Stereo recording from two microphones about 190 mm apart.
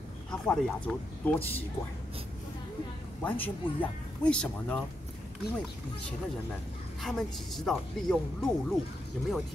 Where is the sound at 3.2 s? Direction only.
10° left (ahead or behind).